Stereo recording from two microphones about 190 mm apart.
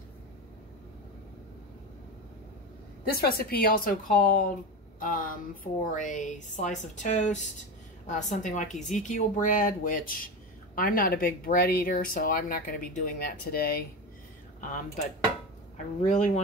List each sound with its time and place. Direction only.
3.2 s speech: 55° left (ahead or behind)
16.1 s speech: 40° left (ahead or behind)